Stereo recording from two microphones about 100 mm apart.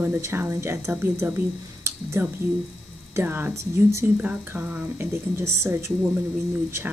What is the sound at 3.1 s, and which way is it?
Speech, 20° right (ahead or behind).